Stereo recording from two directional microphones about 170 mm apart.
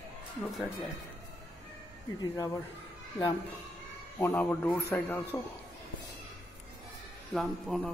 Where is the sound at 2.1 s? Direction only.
20° left (ahead or behind).